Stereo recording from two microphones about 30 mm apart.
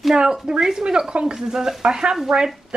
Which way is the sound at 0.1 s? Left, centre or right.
Right.